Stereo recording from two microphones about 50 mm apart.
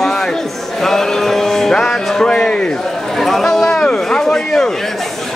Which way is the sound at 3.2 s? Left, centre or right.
Centre.